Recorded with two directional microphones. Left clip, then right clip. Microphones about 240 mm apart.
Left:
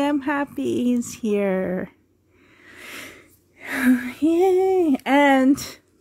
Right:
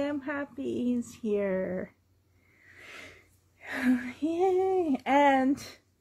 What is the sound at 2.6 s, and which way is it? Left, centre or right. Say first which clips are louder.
Wheeze: left 9 dB; left.